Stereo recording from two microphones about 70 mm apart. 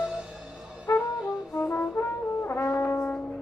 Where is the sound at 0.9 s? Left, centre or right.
Left.